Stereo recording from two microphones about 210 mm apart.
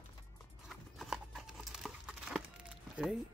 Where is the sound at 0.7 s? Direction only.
Centre (ahead or behind).